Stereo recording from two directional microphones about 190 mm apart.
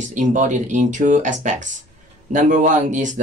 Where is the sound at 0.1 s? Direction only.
40° right (ahead or behind).